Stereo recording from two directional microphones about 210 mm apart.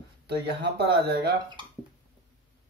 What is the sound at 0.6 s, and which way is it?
Speech, 50° right (ahead or behind).